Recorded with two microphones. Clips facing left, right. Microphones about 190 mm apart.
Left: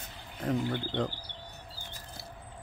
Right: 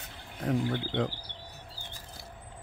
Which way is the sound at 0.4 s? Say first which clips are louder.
Right 1 dB; centre (ahead or behind).